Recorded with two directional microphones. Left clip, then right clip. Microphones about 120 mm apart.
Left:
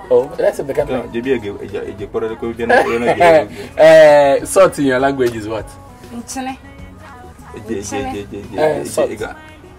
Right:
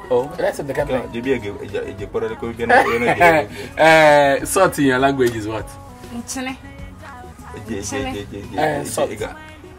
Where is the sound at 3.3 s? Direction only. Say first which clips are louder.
Left 5 dB; 80° right.